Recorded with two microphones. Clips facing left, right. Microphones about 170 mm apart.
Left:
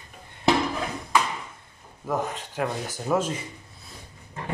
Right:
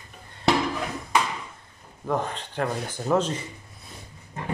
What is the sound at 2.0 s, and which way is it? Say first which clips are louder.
Speech: right 1 dB; 10° left (ahead or behind).